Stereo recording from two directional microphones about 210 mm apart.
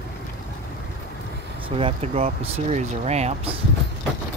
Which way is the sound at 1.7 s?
25° right (ahead or behind).